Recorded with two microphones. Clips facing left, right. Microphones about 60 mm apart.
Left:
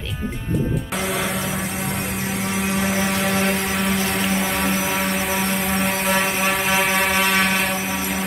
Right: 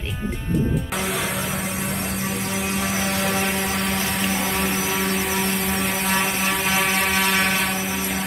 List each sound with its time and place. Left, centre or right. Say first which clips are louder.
2.8 s vehicle: left 3 dB; centre